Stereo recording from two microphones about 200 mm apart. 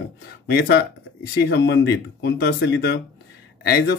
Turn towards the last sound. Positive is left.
turn(degrees=55)  # may be behind; listen again after turning